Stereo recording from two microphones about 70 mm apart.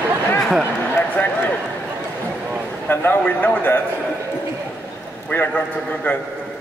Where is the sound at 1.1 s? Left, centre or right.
Left.